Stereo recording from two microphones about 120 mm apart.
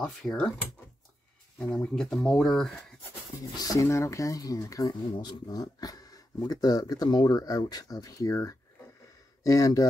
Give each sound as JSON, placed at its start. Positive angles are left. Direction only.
{"t": 0.0, "sound": "speech", "side_deg": 10}
{"t": 1.8, "sound": "speech", "side_deg": 5}
{"t": 3.5, "sound": "speech", "side_deg": 30}